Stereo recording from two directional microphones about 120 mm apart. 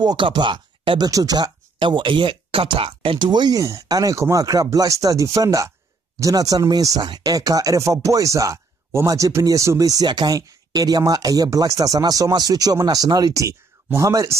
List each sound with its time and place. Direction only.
0.0 s speech: 40° right (ahead or behind)